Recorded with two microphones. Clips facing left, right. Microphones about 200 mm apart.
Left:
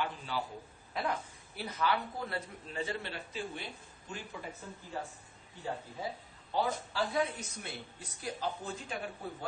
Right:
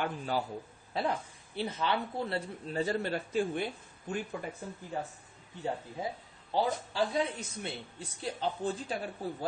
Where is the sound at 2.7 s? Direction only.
40° right (ahead or behind).